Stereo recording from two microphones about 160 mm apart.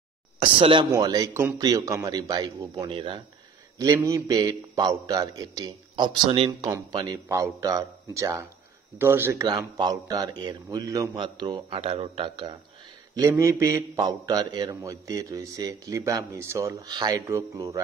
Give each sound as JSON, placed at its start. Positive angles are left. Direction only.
{"t": 0.4, "sound": "a man's voice", "side_deg": -35}
{"t": 0.9, "sound": "a man's voice", "side_deg": -20}
{"t": 3.7, "sound": "a man's voice", "side_deg": -20}